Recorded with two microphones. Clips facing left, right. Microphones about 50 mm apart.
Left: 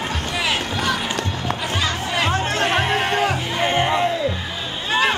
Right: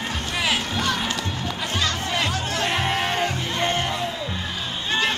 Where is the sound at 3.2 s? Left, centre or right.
Centre.